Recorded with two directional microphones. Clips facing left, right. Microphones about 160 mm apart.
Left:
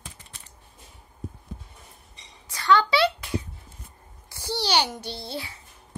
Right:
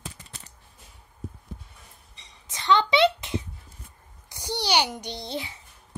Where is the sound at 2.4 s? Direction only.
20° right (ahead or behind).